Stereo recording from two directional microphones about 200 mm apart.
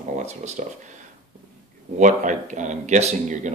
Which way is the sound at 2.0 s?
40° right (ahead or behind).